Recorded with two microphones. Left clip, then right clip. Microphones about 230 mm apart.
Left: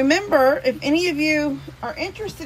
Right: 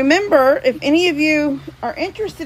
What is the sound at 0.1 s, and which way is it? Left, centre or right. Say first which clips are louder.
A woman's voice: right 6 dB; right.